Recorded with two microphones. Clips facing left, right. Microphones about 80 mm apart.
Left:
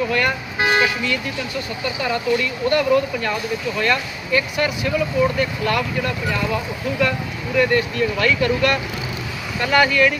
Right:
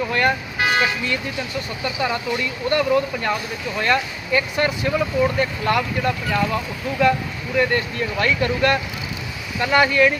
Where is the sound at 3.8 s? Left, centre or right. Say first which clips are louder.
Right 3 dB; right.